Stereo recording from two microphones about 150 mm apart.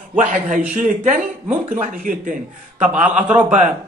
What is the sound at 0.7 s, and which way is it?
Speech, 60° right (ahead or behind).